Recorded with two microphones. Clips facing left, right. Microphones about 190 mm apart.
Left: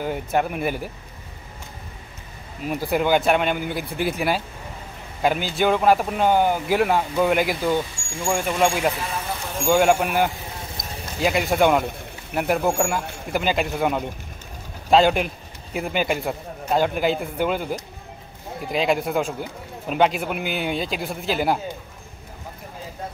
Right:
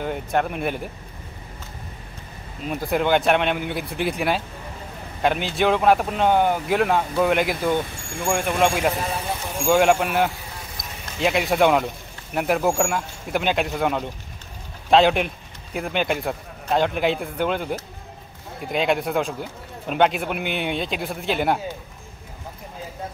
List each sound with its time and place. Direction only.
0.0 s speech: 5° left (ahead or behind)
2.6 s speech: 5° left (ahead or behind)
7.9 s speech: 60° right (ahead or behind)
8.3 s a man's voice: centre (ahead or behind)